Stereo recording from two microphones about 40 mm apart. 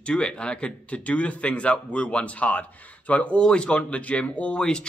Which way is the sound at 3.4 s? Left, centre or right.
Left.